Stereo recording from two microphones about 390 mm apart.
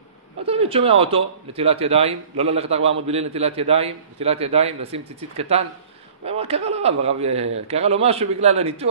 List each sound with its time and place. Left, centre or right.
0.4 s speech: centre